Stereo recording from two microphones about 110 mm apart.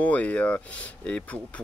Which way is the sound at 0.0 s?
15° left (ahead or behind).